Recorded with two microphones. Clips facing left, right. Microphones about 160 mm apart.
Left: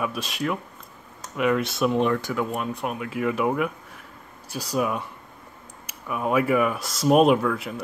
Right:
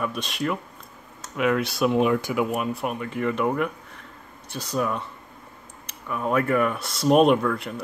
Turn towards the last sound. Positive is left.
turn(degrees=0)  # may be behind; listen again after turning